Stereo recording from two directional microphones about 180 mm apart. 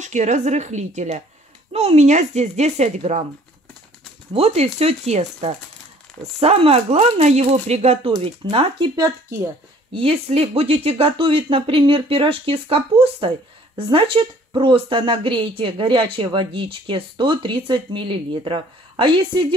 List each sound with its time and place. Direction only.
0.0 s speech: 40° right (ahead or behind)
4.3 s a woman's voice: 35° right (ahead or behind); by 9.5 s 20° right (ahead or behind)
9.9 s a woman's voice: 35° right (ahead or behind)